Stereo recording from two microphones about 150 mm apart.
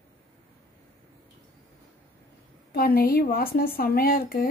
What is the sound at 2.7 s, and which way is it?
A woman's voice, 90° left.